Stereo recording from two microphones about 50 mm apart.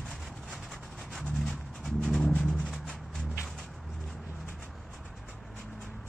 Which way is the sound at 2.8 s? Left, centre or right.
Centre.